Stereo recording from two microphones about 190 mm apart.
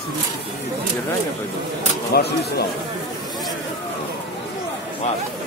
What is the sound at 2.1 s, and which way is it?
Speech, 55° left (ahead or behind).